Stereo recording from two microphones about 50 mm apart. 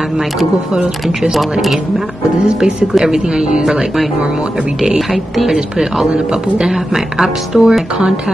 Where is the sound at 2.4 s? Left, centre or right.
Centre.